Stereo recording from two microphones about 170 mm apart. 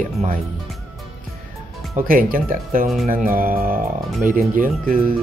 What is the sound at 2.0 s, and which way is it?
Speech, 55° right (ahead or behind).